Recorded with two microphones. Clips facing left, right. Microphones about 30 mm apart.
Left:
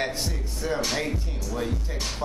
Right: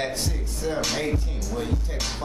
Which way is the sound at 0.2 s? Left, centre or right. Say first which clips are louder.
Right 1 dB; centre.